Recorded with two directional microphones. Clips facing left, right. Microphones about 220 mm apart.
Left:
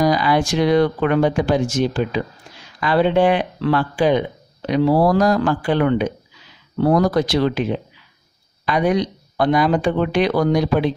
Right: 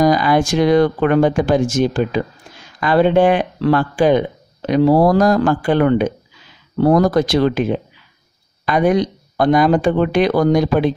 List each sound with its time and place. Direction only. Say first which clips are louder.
0.0 s speech: right 3 dB; 45° right (ahead or behind)